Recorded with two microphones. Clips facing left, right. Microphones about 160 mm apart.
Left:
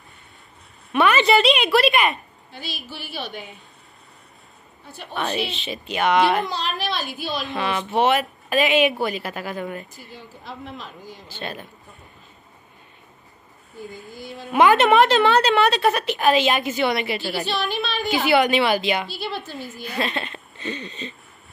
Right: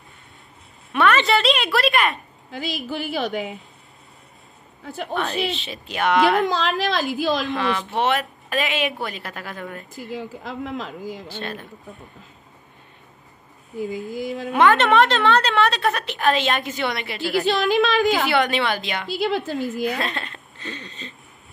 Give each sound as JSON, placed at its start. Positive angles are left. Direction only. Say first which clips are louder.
{"t": 0.9, "sound": "a woman's voice", "louder": "left 1 dB", "side_deg": 5}
{"t": 2.5, "sound": "speech", "louder": "right 8 dB", "side_deg": -90}
{"t": 4.8, "sound": "a woman's voice", "louder": "right 9 dB", "side_deg": -90}
{"t": 5.1, "sound": "a woman's voice", "louder": "right 1 dB", "side_deg": 0}
{"t": 6.4, "sound": "speech", "louder": "right 5 dB", "side_deg": -90}
{"t": 7.5, "sound": "a woman's voice", "louder": "left 1 dB", "side_deg": 5}
{"t": 10.0, "sound": "speech", "louder": "right 8 dB", "side_deg": -90}
{"t": 11.2, "sound": "a woman's voice", "louder": "right 2 dB", "side_deg": 0}
{"t": 13.7, "sound": "speech", "louder": "right 9 dB", "side_deg": -90}
{"t": 14.5, "sound": "a woman's voice", "louder": "left 1 dB", "side_deg": 5}
{"t": 17.6, "sound": "speech", "louder": "right 7 dB", "side_deg": -90}
{"t": 18.3, "sound": "a woman's voice", "louder": "left 3 dB", "side_deg": 5}
{"t": 19.2, "sound": "speech", "louder": "right 7 dB", "side_deg": -90}
{"t": 20.1, "sound": "a woman's voice", "louder": "left 2 dB", "side_deg": 5}